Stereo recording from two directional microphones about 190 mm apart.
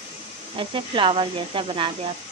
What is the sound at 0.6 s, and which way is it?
Speech, 25° right (ahead or behind).